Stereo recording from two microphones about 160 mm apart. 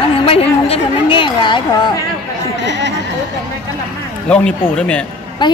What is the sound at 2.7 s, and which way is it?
Speech, 90° right.